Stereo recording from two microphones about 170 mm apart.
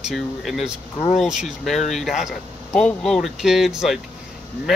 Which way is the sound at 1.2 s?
Centre (ahead or behind).